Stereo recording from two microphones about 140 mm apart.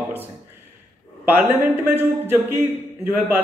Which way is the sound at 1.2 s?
15° right (ahead or behind).